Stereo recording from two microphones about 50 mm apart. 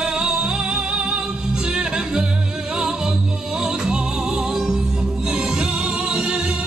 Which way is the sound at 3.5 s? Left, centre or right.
Centre.